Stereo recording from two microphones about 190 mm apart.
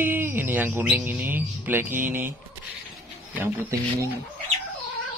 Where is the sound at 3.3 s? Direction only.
15° right (ahead or behind).